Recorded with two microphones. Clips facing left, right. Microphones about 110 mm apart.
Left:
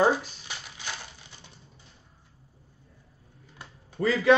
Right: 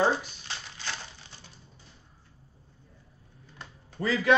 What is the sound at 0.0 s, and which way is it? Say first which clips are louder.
Crumpling: left 3 dB; 15° left (ahead or behind).